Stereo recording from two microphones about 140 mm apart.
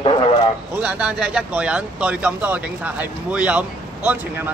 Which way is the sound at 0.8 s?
10° right (ahead or behind).